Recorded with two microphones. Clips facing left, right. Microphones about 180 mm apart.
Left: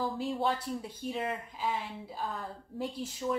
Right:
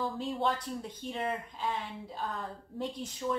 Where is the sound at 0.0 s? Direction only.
5° left (ahead or behind).